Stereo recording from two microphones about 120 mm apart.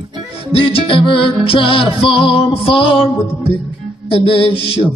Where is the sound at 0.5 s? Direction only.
50° left (ahead or behind).